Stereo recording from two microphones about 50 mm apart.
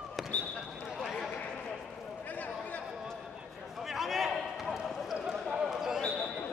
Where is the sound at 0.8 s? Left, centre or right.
Centre.